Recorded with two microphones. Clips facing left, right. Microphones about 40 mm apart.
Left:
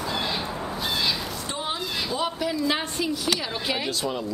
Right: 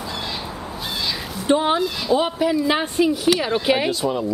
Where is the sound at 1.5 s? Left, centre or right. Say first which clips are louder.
Right 14 dB; right.